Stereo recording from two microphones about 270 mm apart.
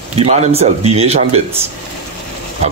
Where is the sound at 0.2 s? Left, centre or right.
Right.